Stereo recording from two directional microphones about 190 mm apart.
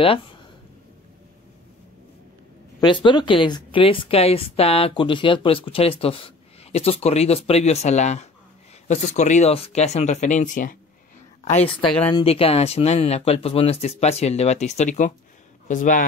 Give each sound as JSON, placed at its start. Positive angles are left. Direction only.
{"t": 0.0, "sound": "a woman's voice", "side_deg": 30}
{"t": 2.8, "sound": "a woman's voice", "side_deg": 25}
{"t": 11.4, "sound": "a woman's voice", "side_deg": 30}